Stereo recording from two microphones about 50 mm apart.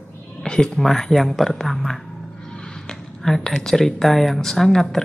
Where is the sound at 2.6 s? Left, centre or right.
Centre.